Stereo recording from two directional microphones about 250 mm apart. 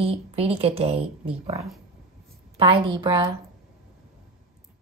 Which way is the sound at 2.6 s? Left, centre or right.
Centre.